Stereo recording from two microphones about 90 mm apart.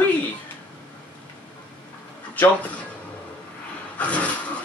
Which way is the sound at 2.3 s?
20° left (ahead or behind).